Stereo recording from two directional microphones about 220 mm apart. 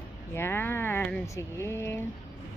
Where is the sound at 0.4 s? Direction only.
10° left (ahead or behind).